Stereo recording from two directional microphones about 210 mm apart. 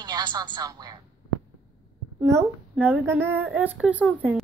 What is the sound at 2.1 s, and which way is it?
A woman's voice, 15° right (ahead or behind).